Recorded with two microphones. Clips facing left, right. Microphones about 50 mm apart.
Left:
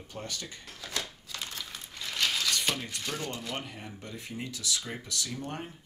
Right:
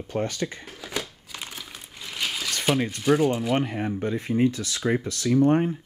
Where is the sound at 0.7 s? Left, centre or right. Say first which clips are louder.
Right 5 dB; centre.